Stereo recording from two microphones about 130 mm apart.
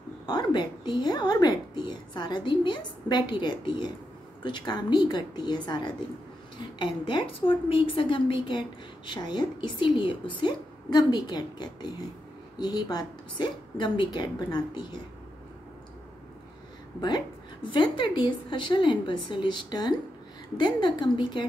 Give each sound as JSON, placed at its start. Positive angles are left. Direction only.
{"t": 0.3, "sound": "a woman's voice", "side_deg": 35}
{"t": 17.6, "sound": "a woman's voice", "side_deg": 40}